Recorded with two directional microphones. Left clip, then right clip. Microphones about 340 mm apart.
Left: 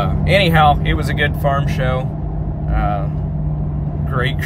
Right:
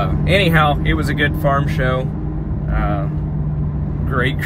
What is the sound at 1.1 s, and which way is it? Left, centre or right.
Speech, left.